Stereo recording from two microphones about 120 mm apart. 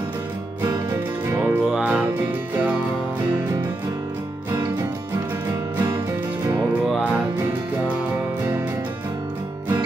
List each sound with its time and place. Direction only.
0.6 s music: 20° right (ahead or behind)